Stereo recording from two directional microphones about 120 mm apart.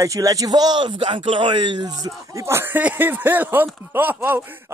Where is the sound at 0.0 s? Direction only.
30° right (ahead or behind).